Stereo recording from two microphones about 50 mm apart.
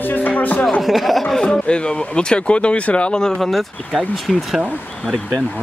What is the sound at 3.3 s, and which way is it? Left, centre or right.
Speech, centre.